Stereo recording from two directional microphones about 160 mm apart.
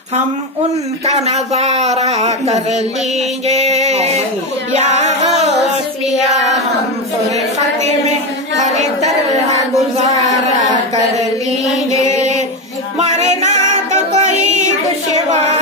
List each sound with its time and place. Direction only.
1.0 s speech: 40° right (ahead or behind)
3.4 s a sound: 40° right (ahead or behind)
4.7 s music: 45° right (ahead or behind)
8.5 s speech: 45° right (ahead or behind)
9.5 s a sound: 45° right (ahead or behind)
11.9 s music: 45° right (ahead or behind)